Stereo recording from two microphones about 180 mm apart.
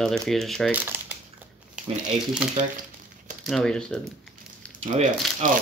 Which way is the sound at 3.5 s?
5° left (ahead or behind).